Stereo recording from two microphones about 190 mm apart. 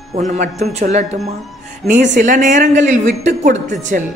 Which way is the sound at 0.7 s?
35° right (ahead or behind).